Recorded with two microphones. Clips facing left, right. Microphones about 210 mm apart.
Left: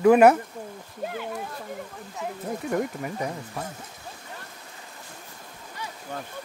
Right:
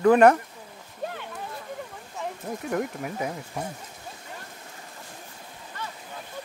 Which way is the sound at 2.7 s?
Centre (ahead or behind).